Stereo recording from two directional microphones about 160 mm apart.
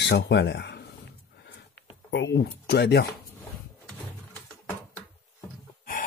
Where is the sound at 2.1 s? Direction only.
85° left.